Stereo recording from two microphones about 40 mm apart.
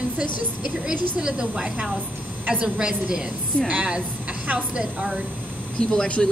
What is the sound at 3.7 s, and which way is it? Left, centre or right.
Speech, right.